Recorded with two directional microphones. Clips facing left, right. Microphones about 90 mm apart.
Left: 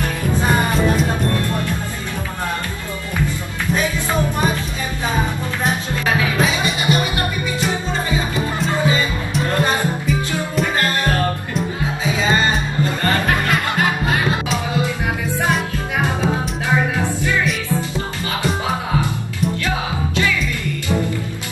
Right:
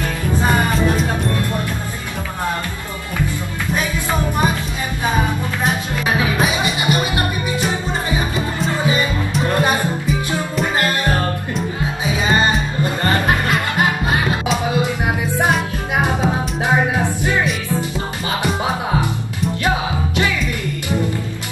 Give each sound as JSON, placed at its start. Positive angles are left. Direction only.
{"t": 6.0, "sound": "music", "side_deg": -20}
{"t": 9.5, "sound": "music", "side_deg": -20}
{"t": 14.8, "sound": "music", "side_deg": -20}
{"t": 19.6, "sound": "music", "side_deg": -20}